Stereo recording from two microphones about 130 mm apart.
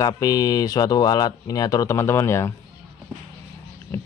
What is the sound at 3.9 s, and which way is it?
Speech, 20° left (ahead or behind).